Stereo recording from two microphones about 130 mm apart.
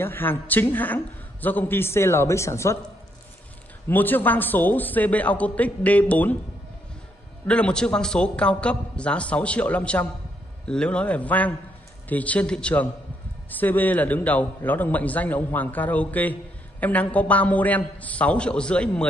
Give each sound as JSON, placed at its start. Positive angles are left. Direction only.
{"t": 0.0, "sound": "a man's voice", "side_deg": 15}
{"t": 3.9, "sound": "a man's voice", "side_deg": 15}
{"t": 7.4, "sound": "a man's voice", "side_deg": 10}